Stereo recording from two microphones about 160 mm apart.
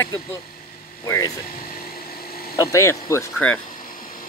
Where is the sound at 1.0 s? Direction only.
20° left (ahead or behind).